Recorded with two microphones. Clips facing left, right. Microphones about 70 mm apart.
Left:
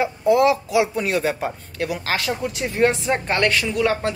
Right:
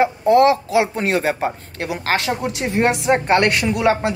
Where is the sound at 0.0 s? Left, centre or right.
Right.